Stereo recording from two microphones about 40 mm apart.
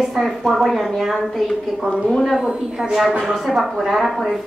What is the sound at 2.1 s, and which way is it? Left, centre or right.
Speech, centre.